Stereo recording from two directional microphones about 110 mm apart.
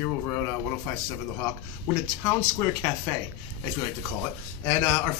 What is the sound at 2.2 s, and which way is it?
Speech, 25° left (ahead or behind).